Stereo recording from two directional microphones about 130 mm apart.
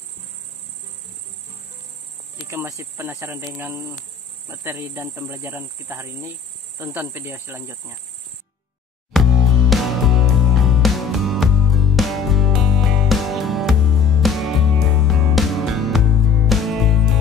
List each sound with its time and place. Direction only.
2.5 s speech: 20° right (ahead or behind)
9.1 s music: centre (ahead or behind)